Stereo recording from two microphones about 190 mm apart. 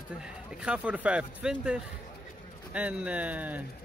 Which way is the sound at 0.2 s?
5° right (ahead or behind).